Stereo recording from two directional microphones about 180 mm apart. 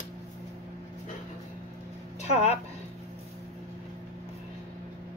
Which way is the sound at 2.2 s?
35° left (ahead or behind).